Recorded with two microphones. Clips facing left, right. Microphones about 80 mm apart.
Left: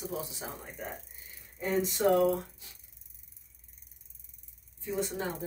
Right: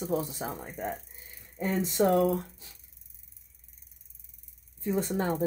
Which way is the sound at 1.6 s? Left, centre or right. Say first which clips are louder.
Right 3 dB; right.